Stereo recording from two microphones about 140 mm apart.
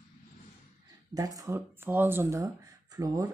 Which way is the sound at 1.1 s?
25° right (ahead or behind).